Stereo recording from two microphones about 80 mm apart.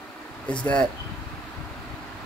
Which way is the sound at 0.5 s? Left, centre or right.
Centre.